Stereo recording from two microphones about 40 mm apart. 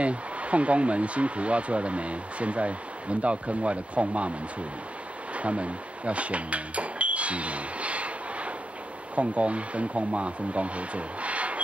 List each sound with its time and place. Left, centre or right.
0.0 s speech: right
5.3 s speech: right